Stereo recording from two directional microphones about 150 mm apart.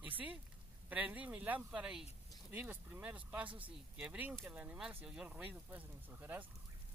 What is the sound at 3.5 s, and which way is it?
Speech, 35° right (ahead or behind).